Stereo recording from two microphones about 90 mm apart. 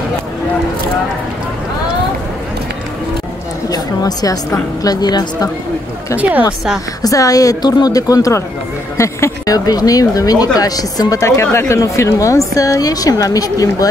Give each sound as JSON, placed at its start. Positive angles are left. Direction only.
{"t": 3.6, "sound": "a woman's voice", "side_deg": 45}
{"t": 7.0, "sound": "speech", "side_deg": 40}
{"t": 9.7, "sound": "speech", "side_deg": 45}